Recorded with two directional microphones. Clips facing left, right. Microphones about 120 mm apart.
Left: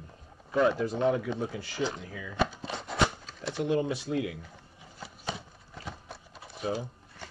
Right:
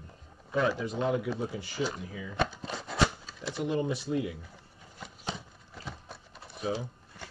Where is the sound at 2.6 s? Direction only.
Centre (ahead or behind).